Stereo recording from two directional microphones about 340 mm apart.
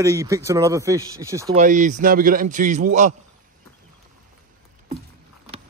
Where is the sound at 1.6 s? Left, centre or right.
Right.